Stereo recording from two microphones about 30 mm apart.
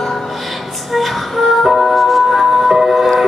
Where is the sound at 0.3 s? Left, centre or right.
Centre.